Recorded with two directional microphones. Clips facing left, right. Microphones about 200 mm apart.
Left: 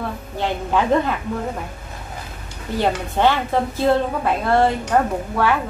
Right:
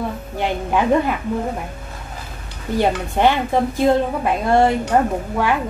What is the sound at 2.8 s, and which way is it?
A woman's voice, 15° right (ahead or behind).